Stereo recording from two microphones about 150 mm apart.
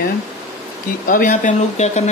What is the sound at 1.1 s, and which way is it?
Speech, 65° left (ahead or behind).